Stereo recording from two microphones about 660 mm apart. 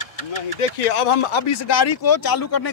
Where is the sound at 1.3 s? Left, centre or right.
Left.